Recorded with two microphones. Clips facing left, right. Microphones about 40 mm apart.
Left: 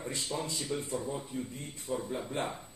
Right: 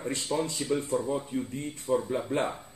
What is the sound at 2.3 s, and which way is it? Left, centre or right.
Speech, right.